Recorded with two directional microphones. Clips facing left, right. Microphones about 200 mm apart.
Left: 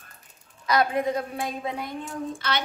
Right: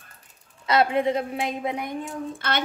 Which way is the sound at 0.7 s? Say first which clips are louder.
Right 2 dB; 25° right (ahead or behind).